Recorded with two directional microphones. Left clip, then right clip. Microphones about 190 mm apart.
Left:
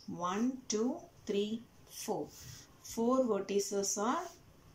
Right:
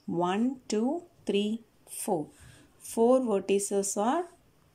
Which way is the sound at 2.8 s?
50° right (ahead or behind).